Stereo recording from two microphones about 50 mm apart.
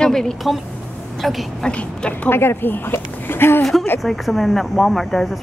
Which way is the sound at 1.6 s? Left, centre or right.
Left.